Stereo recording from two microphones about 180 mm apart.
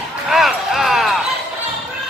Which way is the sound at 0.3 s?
Centre (ahead or behind).